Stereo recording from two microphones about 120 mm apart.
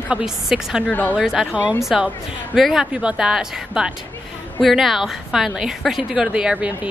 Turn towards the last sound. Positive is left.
turn(degrees=-5)  # may be behind; listen again after turning